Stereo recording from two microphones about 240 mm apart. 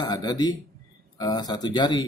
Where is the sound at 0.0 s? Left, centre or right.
Centre.